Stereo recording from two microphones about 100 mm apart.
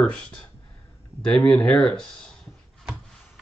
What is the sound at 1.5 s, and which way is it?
Speech, 15° left (ahead or behind).